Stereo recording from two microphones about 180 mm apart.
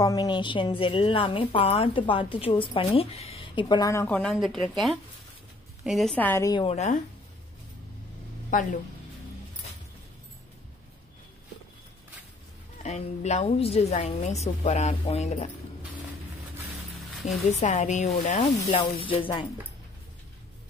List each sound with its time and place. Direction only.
0.0 s a woman's voice: 20° left (ahead or behind)
6.7 s a woman's voice: 40° left (ahead or behind)
8.5 s speech: 50° left (ahead or behind)
12.8 s a woman's voice: 40° left (ahead or behind)
17.5 s a woman's voice: 40° left (ahead or behind)
18.8 s a woman's voice: 30° left (ahead or behind)